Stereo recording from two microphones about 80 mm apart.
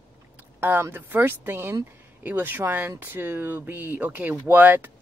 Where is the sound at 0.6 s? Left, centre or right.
Right.